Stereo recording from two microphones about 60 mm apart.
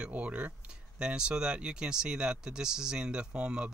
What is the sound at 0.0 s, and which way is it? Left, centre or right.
Speech, right.